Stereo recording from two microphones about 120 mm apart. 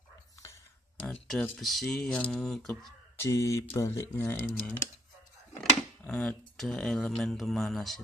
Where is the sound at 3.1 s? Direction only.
25° left (ahead or behind).